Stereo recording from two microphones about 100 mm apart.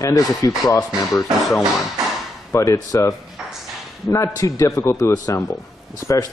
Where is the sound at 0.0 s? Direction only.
35° left (ahead or behind).